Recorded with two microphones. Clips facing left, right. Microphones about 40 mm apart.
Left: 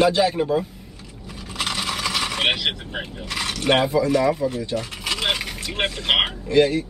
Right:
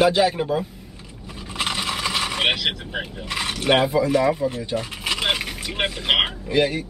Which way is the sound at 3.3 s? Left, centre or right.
Centre.